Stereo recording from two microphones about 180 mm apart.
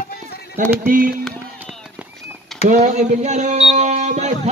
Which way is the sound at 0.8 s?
50° right (ahead or behind).